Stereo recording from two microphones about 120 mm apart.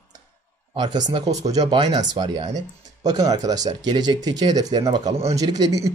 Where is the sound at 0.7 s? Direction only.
35° right (ahead or behind).